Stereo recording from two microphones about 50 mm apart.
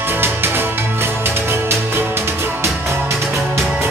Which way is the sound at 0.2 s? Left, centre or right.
Right.